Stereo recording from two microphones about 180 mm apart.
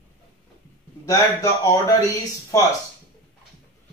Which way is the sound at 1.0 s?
20° left (ahead or behind).